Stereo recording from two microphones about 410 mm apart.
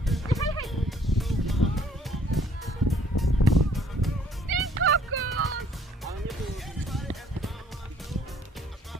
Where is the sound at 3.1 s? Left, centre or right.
Left.